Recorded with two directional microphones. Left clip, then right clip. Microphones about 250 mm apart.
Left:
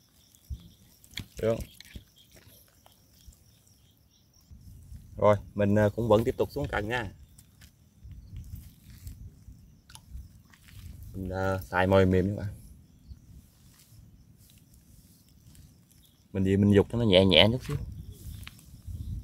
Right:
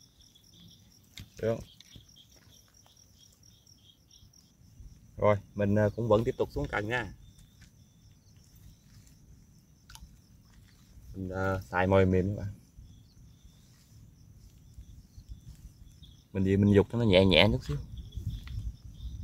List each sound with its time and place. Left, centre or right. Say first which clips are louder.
1.1 s drip: left 3 dB; left
5.1 s speech: left 3 dB; centre
11.2 s speech: left 2 dB; centre
16.3 s speech: left 1 dB; centre
18.5 s a sound: left 4 dB; left